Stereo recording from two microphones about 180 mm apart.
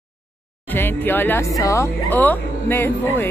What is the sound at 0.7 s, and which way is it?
Speech, 10° left (ahead or behind).